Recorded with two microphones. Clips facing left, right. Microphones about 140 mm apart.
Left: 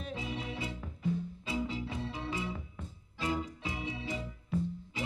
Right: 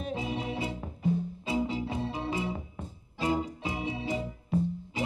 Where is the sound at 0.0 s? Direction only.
20° right (ahead or behind).